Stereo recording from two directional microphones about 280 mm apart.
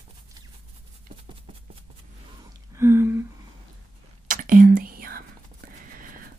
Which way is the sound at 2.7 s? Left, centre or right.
Centre.